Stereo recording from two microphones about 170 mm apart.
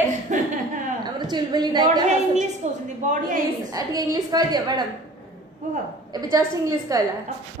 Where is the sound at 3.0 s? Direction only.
45° right (ahead or behind).